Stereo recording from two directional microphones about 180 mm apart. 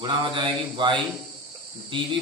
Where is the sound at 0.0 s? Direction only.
25° right (ahead or behind).